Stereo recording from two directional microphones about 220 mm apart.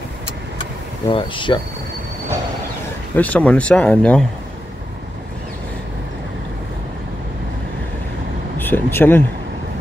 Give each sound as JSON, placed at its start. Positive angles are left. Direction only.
{"t": 1.1, "sound": "speech", "side_deg": 20}
{"t": 3.2, "sound": "speech", "side_deg": 5}
{"t": 8.5, "sound": "speech", "side_deg": 10}